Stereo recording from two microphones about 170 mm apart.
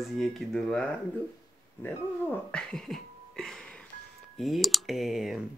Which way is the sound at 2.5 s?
5° left (ahead or behind).